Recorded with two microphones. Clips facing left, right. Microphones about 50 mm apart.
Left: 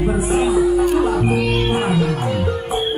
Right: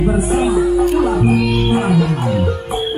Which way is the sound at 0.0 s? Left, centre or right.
Centre.